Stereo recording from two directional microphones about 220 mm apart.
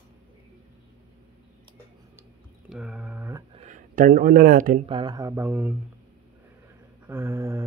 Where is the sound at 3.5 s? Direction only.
35° right (ahead or behind).